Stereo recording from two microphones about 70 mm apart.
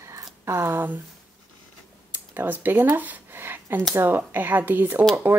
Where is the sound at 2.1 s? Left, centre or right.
Right.